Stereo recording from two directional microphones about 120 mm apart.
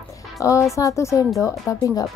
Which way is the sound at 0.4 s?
25° left (ahead or behind).